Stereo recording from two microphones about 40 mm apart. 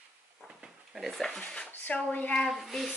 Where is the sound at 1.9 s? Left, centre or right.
Left.